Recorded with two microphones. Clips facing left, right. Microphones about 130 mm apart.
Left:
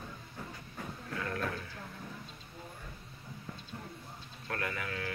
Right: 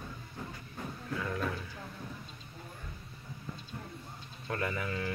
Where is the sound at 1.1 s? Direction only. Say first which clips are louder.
Right 2 dB; 10° right (ahead or behind).